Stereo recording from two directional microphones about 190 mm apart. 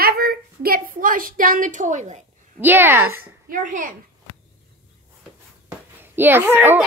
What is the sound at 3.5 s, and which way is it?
Speech, 45° right (ahead or behind).